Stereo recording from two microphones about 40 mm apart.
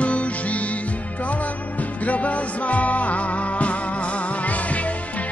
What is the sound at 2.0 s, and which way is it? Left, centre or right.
Music, left.